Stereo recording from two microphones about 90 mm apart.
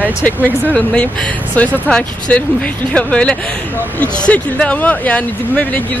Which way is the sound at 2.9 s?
10° left (ahead or behind).